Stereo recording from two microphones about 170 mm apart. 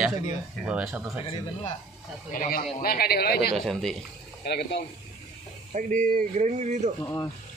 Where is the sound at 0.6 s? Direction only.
5° right (ahead or behind).